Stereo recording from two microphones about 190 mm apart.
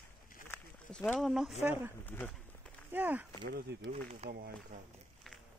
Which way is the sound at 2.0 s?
10° left (ahead or behind).